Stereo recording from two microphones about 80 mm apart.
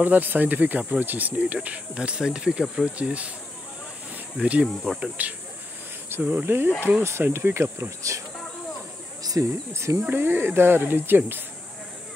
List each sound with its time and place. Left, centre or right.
0.0 s speech: right
4.4 s speech: centre
6.0 s speech: right
9.2 s a sound: right
9.7 s speech: right
9.9 s speech: right